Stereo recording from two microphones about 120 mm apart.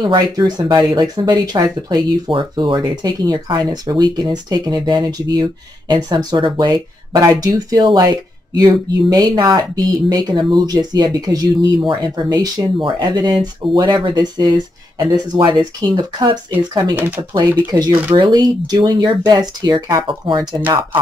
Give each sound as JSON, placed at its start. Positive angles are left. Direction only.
{"t": 0.0, "sound": "speech", "side_deg": -35}
{"t": 16.9, "sound": "speech", "side_deg": -20}
{"t": 17.6, "sound": "speech", "side_deg": -35}